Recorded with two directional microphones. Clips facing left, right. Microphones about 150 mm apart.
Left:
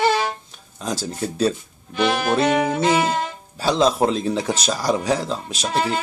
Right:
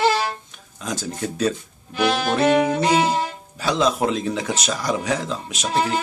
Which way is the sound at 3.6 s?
30° left (ahead or behind).